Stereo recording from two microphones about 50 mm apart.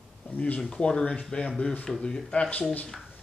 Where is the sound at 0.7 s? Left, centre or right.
Centre.